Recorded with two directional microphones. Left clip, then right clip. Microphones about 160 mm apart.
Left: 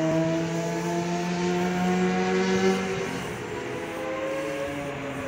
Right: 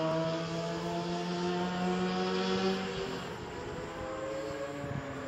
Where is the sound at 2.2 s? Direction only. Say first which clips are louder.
Left 8 dB; 10° left (ahead or behind).